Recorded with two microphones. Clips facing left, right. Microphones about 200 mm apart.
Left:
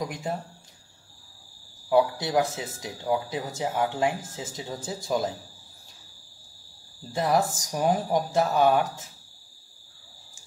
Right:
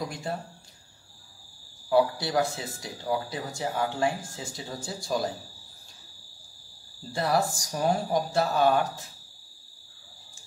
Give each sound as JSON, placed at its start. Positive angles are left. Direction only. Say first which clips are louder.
{"t": 0.1, "sound": "speech", "louder": "left 2 dB", "side_deg": 20}
{"t": 1.9, "sound": "speech", "louder": "left 1 dB", "side_deg": 20}
{"t": 7.1, "sound": "speech", "louder": "left 2 dB", "side_deg": 20}